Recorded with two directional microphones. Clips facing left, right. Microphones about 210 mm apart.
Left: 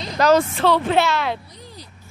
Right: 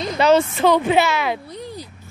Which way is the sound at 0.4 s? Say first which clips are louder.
Right 2 dB; 15° right (ahead or behind).